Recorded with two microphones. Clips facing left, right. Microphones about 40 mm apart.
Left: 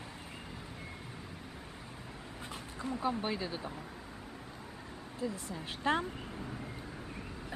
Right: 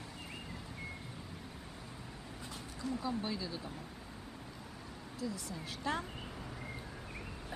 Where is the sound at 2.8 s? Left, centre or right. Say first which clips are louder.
Even; left.